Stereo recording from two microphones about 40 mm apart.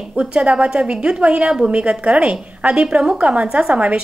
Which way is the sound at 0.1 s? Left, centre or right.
Right.